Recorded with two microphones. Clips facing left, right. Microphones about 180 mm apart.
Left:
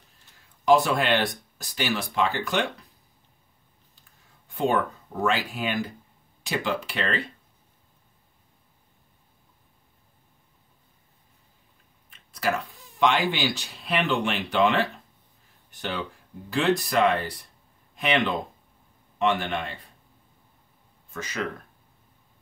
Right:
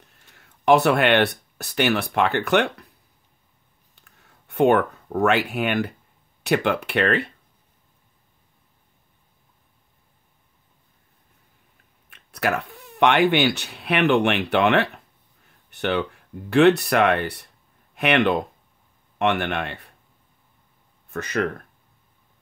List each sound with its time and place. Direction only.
0.3 s speech: 70° right (ahead or behind)
3.9 s a sound: 65° right (ahead or behind)
6.4 s speech: 65° right (ahead or behind)
12.1 s speech: 65° right (ahead or behind)
21.1 s speech: 60° right (ahead or behind)